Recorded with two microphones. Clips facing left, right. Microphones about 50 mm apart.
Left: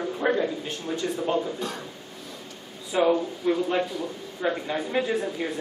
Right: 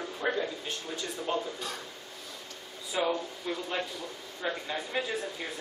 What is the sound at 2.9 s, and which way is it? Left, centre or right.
A man's voice, centre.